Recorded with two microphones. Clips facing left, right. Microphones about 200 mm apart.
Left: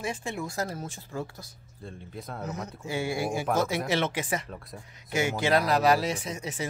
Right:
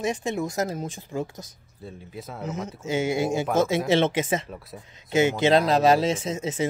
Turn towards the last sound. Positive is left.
turn(degrees=-25)  # may be behind; listen again after turning